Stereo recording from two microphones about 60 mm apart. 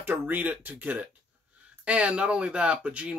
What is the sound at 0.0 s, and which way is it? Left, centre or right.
Speech, right.